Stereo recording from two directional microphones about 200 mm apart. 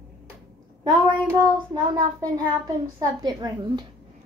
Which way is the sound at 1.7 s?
20° right (ahead or behind).